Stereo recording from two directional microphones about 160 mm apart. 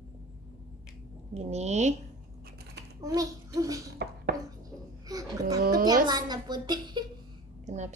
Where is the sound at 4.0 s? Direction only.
90° right.